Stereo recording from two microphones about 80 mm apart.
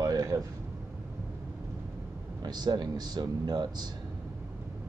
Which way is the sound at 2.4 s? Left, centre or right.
Right.